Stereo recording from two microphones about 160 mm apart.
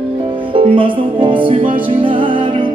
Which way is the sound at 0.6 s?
30° right (ahead or behind).